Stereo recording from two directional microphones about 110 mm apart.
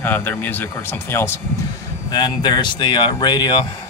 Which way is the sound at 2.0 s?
40° left (ahead or behind).